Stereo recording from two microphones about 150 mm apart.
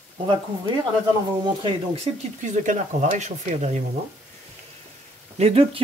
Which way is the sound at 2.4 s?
55° right (ahead or behind).